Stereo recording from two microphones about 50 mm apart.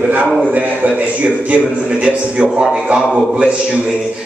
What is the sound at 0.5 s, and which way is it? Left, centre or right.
A man's voice, right.